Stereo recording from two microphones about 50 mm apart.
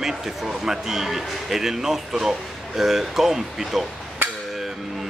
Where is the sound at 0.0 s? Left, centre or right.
Centre.